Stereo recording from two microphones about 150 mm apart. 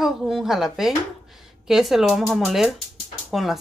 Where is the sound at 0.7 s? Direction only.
Centre (ahead or behind).